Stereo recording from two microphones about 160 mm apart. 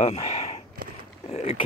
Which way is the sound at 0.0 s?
40° left (ahead or behind).